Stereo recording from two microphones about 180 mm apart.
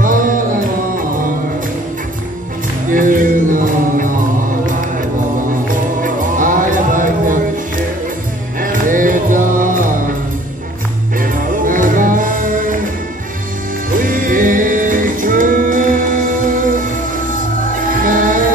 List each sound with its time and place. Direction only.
0.0 s music: 50° right (ahead or behind)
2.9 s music: 50° right (ahead or behind)
5.5 s music: 50° right (ahead or behind)
8.5 s music: 50° right (ahead or behind)
11.1 s music: 50° right (ahead or behind)
13.8 s music: 50° right (ahead or behind)